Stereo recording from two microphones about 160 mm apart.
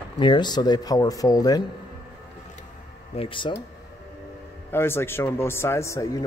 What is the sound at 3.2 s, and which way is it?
Speech, 30° left (ahead or behind).